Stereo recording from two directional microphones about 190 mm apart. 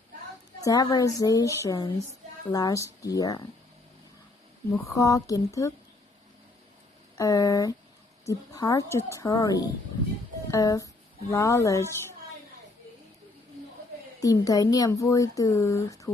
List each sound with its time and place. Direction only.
0.6 s speech: 20° left (ahead or behind)
4.7 s speech: 15° left (ahead or behind)
7.2 s speech: 15° left (ahead or behind)
14.2 s speech: 20° left (ahead or behind)